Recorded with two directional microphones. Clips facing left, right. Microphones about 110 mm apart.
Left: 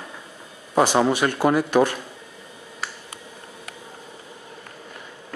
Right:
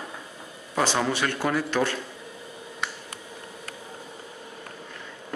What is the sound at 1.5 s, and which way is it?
Speech, 20° left (ahead or behind).